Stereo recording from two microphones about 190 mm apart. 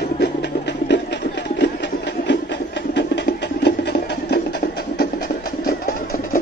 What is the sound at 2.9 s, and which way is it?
Music, 65° left (ahead or behind).